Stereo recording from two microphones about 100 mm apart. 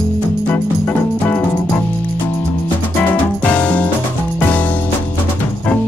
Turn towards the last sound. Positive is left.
turn(degrees=15)  # may be behind; listen again after turning